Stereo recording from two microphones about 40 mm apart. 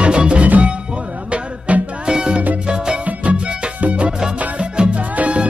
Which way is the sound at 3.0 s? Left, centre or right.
Right.